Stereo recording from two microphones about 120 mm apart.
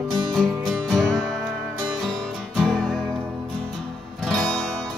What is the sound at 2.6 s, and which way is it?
Music, 5° left (ahead or behind).